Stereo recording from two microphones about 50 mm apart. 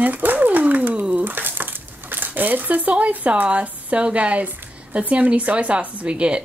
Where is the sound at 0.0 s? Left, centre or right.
Right.